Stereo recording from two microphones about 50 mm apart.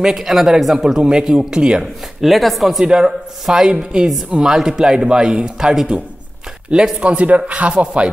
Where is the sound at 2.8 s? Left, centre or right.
Centre.